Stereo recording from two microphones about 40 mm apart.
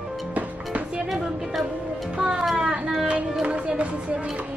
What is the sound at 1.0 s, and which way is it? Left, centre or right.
Speech, centre.